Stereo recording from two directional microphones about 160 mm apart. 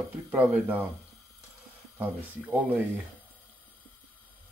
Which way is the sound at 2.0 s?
10° right (ahead or behind).